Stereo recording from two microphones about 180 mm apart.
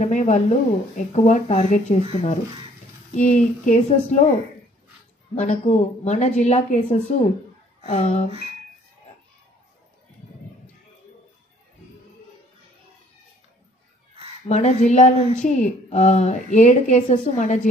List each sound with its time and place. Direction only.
0.0 s a woman's voice: 40° left (ahead or behind)
5.3 s a woman's voice: 40° left (ahead or behind)
14.5 s a woman's voice: 40° left (ahead or behind)